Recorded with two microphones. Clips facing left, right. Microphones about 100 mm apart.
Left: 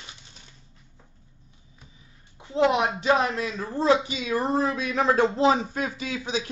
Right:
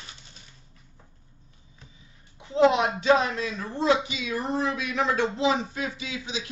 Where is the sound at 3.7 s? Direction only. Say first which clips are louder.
Left 2 dB; 35° left (ahead or behind).